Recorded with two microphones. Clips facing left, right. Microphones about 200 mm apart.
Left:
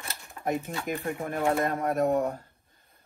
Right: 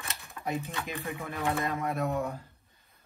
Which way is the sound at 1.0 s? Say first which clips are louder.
Left 6 dB; 50° left (ahead or behind).